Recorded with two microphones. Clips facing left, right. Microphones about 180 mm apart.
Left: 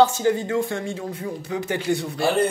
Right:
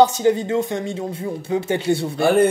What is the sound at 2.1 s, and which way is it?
Speech, 55° right (ahead or behind).